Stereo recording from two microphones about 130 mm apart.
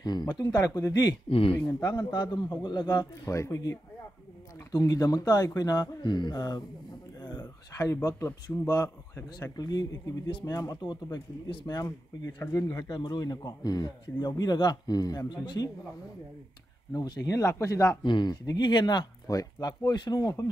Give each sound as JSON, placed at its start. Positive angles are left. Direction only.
{"t": 0.0, "sound": "speech", "side_deg": 30}
{"t": 1.3, "sound": "speech", "side_deg": 45}
{"t": 1.7, "sound": "speech", "side_deg": 30}
{"t": 7.2, "sound": "a sound", "side_deg": 35}
{"t": 8.6, "sound": "speech", "side_deg": 30}
{"t": 16.9, "sound": "speech", "side_deg": 30}
{"t": 18.0, "sound": "speech", "side_deg": 35}